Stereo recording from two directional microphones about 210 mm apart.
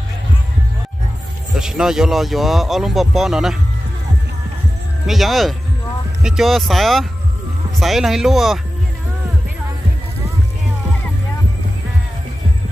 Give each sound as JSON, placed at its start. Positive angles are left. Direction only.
{"t": 1.5, "sound": "speech", "side_deg": 0}
{"t": 5.0, "sound": "speech", "side_deg": 0}